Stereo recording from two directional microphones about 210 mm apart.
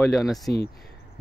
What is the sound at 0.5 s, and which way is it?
Speech, 50° left (ahead or behind).